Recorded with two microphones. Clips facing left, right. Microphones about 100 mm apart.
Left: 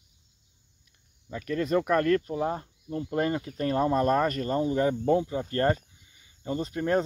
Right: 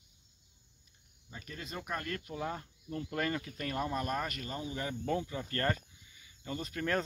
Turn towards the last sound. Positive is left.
turn(degrees=25)  # may be behind; listen again after turning